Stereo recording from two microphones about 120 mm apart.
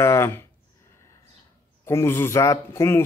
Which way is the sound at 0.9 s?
25° left (ahead or behind).